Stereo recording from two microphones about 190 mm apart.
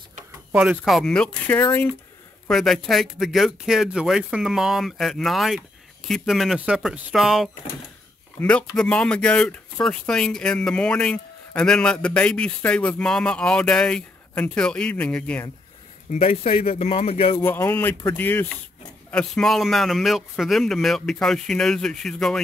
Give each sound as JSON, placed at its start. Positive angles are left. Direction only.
{"t": 0.5, "sound": "speech", "side_deg": -5}
{"t": 16.1, "sound": "speech", "side_deg": 35}
{"t": 17.4, "sound": "speech", "side_deg": 15}